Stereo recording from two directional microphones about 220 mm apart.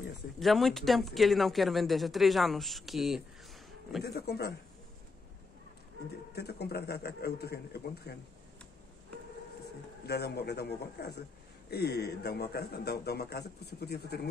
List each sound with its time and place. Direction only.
0.4 s speech: centre (ahead or behind)
4.0 s a man's voice: 45° left (ahead or behind)
6.3 s a man's voice: 45° left (ahead or behind)
10.0 s a man's voice: 45° left (ahead or behind)